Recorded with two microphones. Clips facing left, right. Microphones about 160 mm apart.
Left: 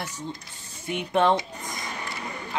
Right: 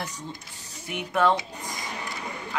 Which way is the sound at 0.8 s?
25° left (ahead or behind).